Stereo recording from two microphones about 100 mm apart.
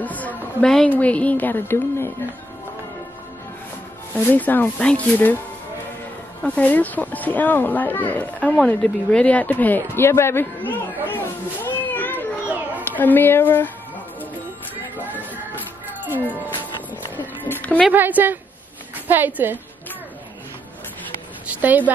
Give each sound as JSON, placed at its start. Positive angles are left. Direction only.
{"t": 0.0, "sound": "a sound", "side_deg": 15}
{"t": 0.8, "sound": "speech", "side_deg": 15}
{"t": 4.1, "sound": "speech", "side_deg": 15}
{"t": 6.4, "sound": "speech", "side_deg": 15}
{"t": 17.2, "sound": "a sound", "side_deg": 15}
{"t": 17.9, "sound": "a woman's voice", "side_deg": -20}
{"t": 21.5, "sound": "a woman's voice", "side_deg": -15}